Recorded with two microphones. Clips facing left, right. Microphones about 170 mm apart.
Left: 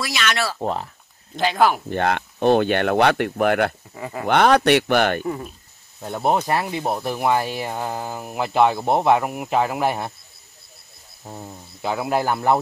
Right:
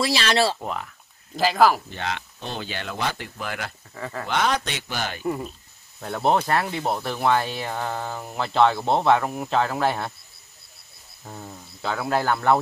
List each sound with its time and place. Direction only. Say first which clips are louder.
0.0 s speech: right 3 dB; 30° right (ahead or behind)
0.6 s speech: left 6 dB; 30° left (ahead or behind)
1.3 s speech: even; centre (ahead or behind)
1.9 s speech: left 9 dB; 55° left (ahead or behind)
3.9 s speech: left 3 dB; 15° left (ahead or behind)
4.3 s speech: left 10 dB; 60° left (ahead or behind)
5.2 s speech: even; centre (ahead or behind)
5.9 s speech: left 1 dB; 10° left (ahead or behind)
11.2 s speech: left 2 dB; 20° left (ahead or behind)